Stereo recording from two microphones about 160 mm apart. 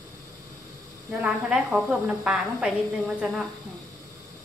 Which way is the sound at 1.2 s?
5° right (ahead or behind).